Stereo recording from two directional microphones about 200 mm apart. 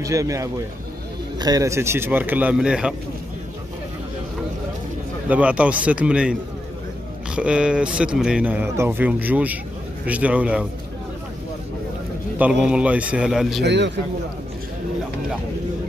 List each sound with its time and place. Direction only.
0.0 s a man's voice: 15° right (ahead or behind)
5.3 s a man's voice: 5° right (ahead or behind)
12.4 s speech: 5° right (ahead or behind)
13.7 s a man's voice: 60° right (ahead or behind)